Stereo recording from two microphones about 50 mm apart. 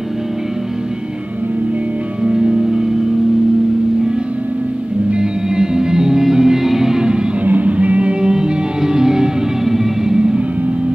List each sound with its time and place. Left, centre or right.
2.2 s music: centre
5.1 s music: centre
7.4 s music: right; by 10.4 s centre